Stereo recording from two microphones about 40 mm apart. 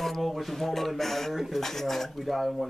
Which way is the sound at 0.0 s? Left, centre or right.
Centre.